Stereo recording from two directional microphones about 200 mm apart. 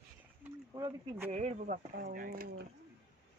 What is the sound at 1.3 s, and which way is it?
Speech, 35° right (ahead or behind).